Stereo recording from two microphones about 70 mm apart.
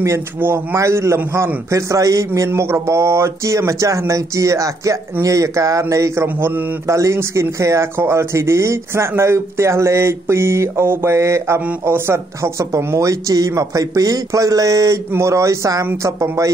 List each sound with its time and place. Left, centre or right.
0.7 s speech: right
6.2 s speech: right
6.9 s speech: right